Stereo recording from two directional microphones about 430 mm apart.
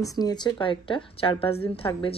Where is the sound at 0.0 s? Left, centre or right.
Centre.